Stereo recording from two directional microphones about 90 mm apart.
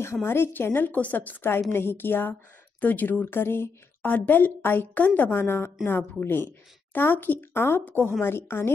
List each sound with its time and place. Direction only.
0.0 s a woman's voice: 25° left (ahead or behind)